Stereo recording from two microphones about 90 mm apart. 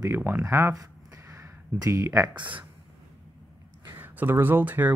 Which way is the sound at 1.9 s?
30° right (ahead or behind).